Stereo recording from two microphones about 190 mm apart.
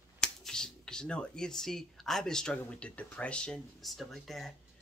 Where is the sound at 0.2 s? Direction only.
5° left (ahead or behind).